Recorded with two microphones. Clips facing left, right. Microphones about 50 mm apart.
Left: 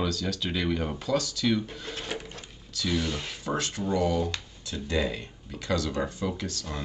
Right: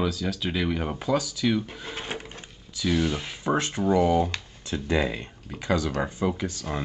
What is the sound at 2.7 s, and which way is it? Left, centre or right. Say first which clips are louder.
Speech: right 4 dB; centre.